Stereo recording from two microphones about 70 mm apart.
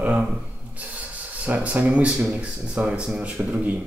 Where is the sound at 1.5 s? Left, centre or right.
Right.